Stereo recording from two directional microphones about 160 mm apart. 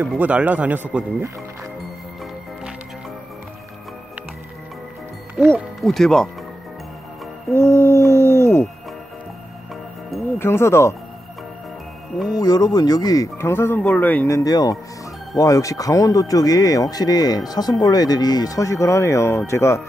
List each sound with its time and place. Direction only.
0.0 s speech: 10° right (ahead or behind)
5.5 s speech: centre (ahead or behind)
7.5 s a sound: 15° left (ahead or behind)
10.4 s speech: 15° left (ahead or behind)
12.4 s speech: 25° left (ahead or behind)